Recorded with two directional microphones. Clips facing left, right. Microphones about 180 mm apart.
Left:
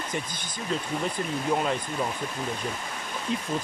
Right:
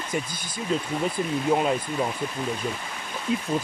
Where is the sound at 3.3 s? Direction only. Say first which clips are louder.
Right 4 dB; 5° right (ahead or behind).